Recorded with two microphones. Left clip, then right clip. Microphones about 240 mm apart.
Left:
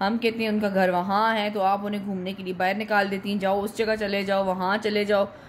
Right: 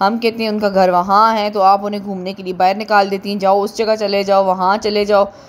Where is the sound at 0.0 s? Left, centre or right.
Right.